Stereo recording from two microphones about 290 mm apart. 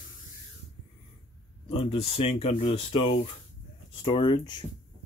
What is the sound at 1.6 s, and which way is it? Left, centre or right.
Speech, centre.